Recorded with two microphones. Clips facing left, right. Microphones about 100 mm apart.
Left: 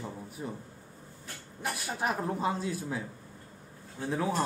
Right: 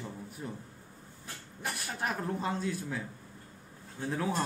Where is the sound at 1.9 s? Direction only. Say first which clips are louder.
Left 3 dB; 10° left (ahead or behind).